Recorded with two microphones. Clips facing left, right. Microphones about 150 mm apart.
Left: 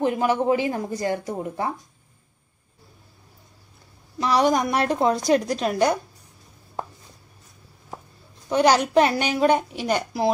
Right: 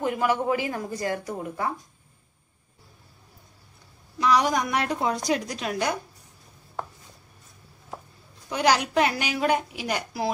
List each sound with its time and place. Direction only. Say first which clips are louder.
0.0 s speech: left 3 dB; 25° left (ahead or behind)
4.2 s a woman's voice: left 2 dB; 35° left (ahead or behind)
8.5 s a woman's voice: left 4 dB; 35° left (ahead or behind)